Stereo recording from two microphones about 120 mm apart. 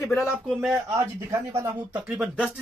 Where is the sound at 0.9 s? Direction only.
25° right (ahead or behind).